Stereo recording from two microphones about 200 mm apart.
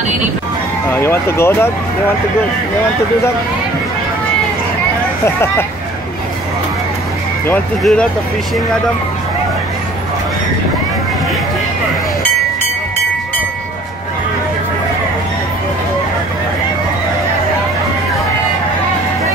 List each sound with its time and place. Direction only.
0.8 s speech: 10° left (ahead or behind)
5.2 s speech: 10° left (ahead or behind)
7.4 s speech: 5° left (ahead or behind)